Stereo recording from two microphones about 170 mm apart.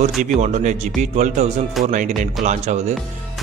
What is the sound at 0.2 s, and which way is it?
Speech, 45° right (ahead or behind).